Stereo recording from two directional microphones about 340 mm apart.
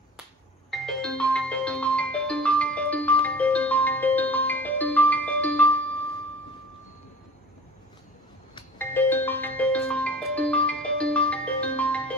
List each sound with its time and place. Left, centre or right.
0.7 s music: centre
8.5 s music: centre